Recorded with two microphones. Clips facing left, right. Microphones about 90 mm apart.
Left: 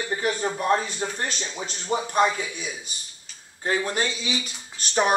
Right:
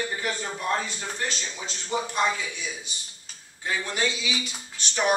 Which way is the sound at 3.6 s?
40° left (ahead or behind).